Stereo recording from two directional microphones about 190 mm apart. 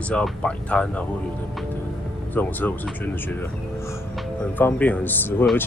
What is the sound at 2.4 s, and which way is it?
Speech, 10° left (ahead or behind).